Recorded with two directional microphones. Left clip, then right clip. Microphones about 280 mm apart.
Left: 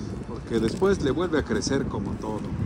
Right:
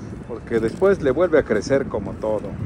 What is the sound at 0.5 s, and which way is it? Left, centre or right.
Speech, centre.